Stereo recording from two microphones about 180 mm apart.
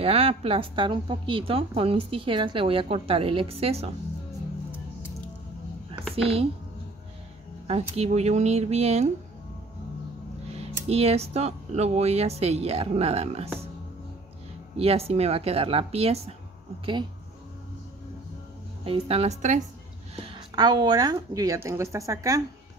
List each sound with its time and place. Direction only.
0.0 s a woman's voice: 30° right (ahead or behind)
6.2 s a woman's voice: 35° right (ahead or behind)
7.6 s a woman's voice: 35° right (ahead or behind)
10.6 s a woman's voice: 35° right (ahead or behind)
14.8 s a woman's voice: 35° right (ahead or behind)
18.9 s a woman's voice: 35° right (ahead or behind)
20.2 s a woman's voice: 25° right (ahead or behind)